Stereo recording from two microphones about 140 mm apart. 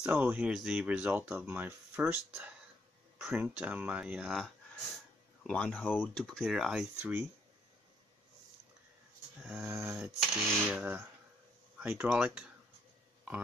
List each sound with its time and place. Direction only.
0.0 s speech: 10° right (ahead or behind)
5.5 s speech: 10° left (ahead or behind); by 7.2 s 10° right (ahead or behind)
9.4 s speech: 5° right (ahead or behind)
9.7 s speech: 20° right (ahead or behind)
10.3 s speech: centre (ahead or behind)
10.8 s speech: 15° right (ahead or behind)